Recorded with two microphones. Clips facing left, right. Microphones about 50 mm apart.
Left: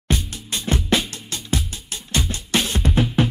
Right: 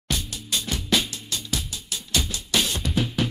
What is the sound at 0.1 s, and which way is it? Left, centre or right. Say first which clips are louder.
Music: left 3 dB; left.